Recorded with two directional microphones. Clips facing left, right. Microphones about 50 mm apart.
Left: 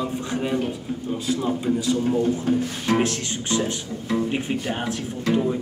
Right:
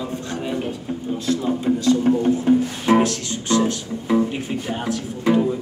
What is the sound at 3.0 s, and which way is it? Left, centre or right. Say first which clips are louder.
Music: right 3 dB; left.